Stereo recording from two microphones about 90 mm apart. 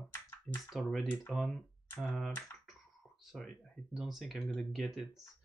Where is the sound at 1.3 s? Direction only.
Centre (ahead or behind).